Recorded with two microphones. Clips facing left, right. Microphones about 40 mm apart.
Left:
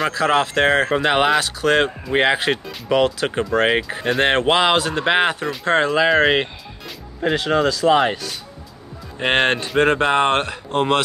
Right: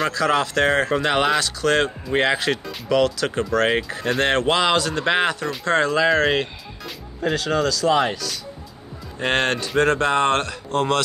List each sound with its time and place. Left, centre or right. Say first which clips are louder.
0.1 s speech: left 2 dB; left